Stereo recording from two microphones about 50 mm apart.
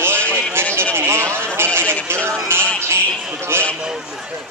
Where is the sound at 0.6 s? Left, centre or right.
Right.